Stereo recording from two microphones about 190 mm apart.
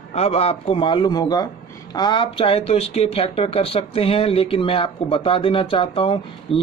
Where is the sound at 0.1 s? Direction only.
35° left (ahead or behind).